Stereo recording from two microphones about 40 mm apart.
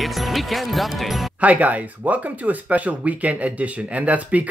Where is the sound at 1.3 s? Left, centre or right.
Right.